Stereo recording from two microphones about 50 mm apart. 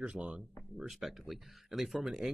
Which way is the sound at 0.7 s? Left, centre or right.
Centre.